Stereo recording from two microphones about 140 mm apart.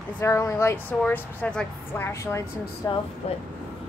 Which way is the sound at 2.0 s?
20° left (ahead or behind).